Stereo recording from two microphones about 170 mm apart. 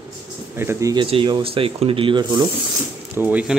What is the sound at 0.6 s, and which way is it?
Speech, 15° right (ahead or behind).